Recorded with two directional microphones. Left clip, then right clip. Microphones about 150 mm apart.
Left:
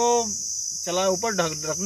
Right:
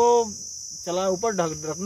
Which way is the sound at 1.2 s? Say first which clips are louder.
Even; 55° right (ahead or behind).